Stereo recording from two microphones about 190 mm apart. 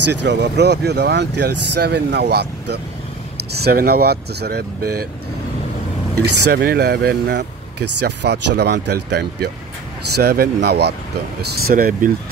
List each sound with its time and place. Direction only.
0.2 s speech: 65° right (ahead or behind)
6.2 s speech: 55° right (ahead or behind)